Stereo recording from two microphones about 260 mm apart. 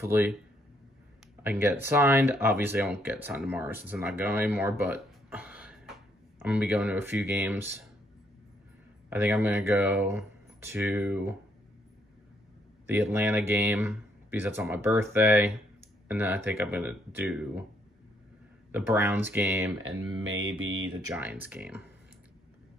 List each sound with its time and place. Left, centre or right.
0.0 s speech: centre
1.4 s speech: centre
9.1 s speech: centre
12.8 s speech: centre
18.7 s speech: centre
19.8 s speech: right
20.9 s speech: centre